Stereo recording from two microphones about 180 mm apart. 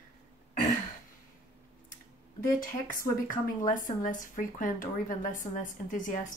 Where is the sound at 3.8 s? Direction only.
50° left (ahead or behind).